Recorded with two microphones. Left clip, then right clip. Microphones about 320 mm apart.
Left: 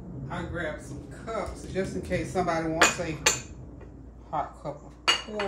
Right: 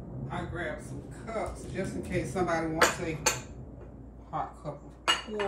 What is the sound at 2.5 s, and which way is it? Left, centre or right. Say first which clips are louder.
Dishes: left 3 dB; centre.